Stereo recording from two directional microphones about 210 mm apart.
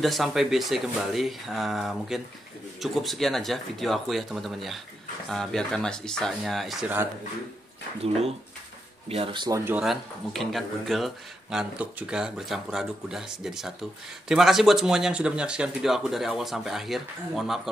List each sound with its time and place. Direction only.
0.0 s speech: centre (ahead or behind)
9.1 s speech: 25° right (ahead or behind)
9.7 s speech: centre (ahead or behind)